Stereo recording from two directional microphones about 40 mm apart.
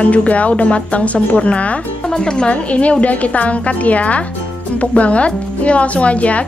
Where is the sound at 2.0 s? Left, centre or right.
Centre.